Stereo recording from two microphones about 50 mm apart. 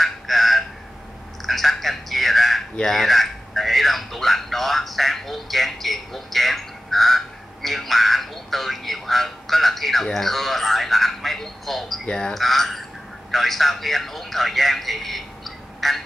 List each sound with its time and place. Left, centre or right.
0.0 s a sound: centre
10.1 s speech: centre
12.1 s speech: centre
12.4 s a man's voice: centre